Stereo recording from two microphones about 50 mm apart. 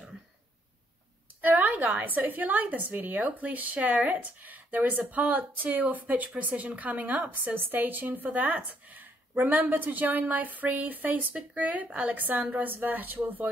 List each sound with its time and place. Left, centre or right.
1.4 s a woman's voice: right